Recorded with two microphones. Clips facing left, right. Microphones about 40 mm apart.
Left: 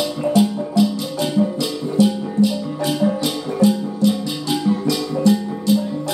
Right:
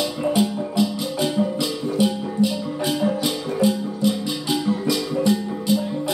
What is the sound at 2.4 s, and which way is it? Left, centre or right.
Music, centre.